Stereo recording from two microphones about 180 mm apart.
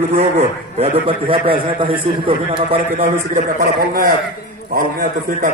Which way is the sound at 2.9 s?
45° right (ahead or behind).